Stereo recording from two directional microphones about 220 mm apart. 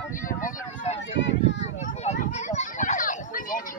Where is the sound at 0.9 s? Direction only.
55° left (ahead or behind).